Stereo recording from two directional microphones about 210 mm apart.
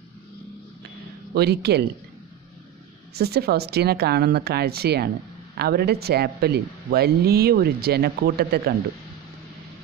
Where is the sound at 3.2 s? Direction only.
50° right (ahead or behind).